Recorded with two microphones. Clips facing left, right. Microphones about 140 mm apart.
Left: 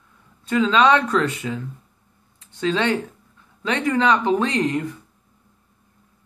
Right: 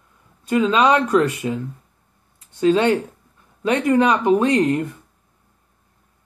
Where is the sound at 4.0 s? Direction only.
20° right (ahead or behind).